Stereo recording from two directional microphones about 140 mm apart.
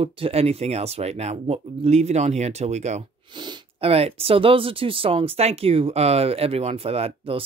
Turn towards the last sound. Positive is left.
turn(degrees=-45)  # may be behind; listen again after turning